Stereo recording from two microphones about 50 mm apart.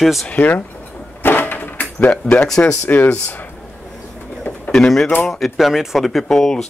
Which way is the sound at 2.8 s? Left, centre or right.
Left.